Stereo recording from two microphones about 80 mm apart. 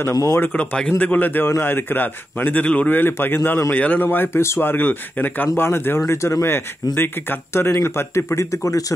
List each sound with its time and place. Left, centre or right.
0.1 s speech: left
0.6 s a man's voice: centre; by 8.8 s left